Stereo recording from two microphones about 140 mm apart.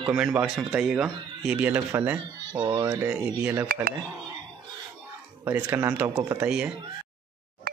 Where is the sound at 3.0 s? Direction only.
10° right (ahead or behind).